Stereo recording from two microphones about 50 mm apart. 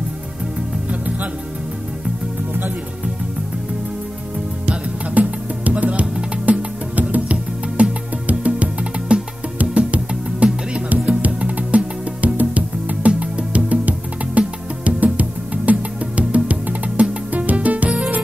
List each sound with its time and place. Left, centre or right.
0.8 s music: right
5.1 s music: right